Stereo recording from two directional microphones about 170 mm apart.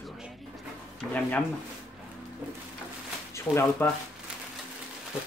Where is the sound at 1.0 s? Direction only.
10° left (ahead or behind).